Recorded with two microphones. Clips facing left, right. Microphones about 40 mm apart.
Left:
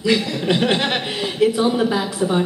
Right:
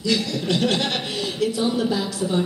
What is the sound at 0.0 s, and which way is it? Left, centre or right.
A man's voice, left.